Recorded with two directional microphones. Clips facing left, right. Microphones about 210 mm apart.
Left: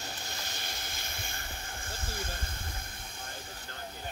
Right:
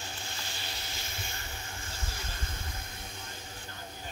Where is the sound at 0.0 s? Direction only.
45° left (ahead or behind).